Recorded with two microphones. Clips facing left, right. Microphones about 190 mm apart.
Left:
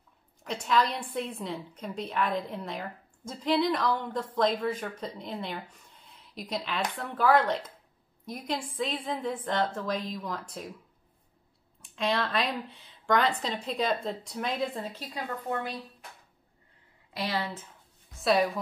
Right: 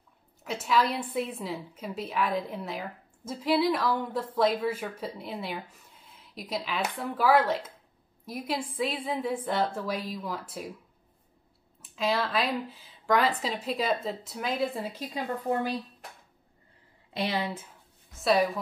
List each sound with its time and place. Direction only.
0.4 s a woman's voice: 5° right (ahead or behind)
11.8 s a woman's voice: 5° right (ahead or behind)
17.1 s a woman's voice: 20° right (ahead or behind)
18.1 s a woman's voice: centre (ahead or behind)